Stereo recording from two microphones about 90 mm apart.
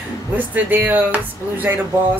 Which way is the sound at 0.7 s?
20° right (ahead or behind).